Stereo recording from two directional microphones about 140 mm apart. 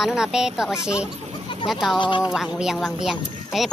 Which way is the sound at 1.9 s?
35° left (ahead or behind).